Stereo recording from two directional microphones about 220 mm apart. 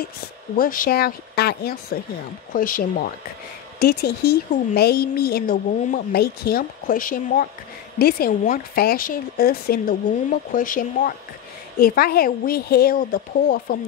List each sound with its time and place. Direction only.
0.6 s speech: 40° left (ahead or behind)